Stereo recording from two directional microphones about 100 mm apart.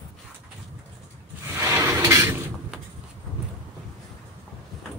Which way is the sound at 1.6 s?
25° right (ahead or behind).